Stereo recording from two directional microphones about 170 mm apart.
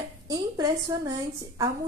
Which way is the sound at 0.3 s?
20° right (ahead or behind).